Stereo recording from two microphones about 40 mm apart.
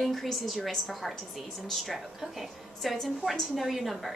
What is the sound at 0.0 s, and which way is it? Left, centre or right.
Speech, centre.